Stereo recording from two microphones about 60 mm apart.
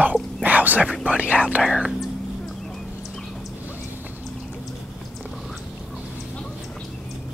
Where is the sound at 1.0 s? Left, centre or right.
Right.